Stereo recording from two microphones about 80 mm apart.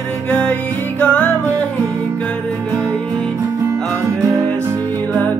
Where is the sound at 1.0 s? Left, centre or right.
Centre.